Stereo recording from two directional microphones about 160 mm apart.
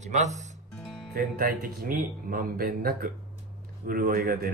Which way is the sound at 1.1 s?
65° right (ahead or behind).